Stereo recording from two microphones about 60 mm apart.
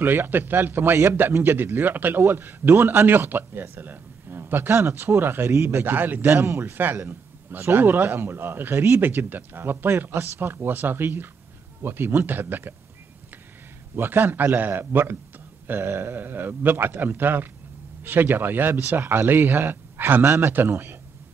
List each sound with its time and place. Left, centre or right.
0.0 s speech: right
6.3 s speech: right
9.0 s speech: right
13.9 s speech: right
16.2 s speech: right